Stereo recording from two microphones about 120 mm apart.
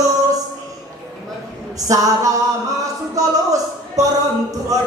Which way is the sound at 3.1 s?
30° right (ahead or behind).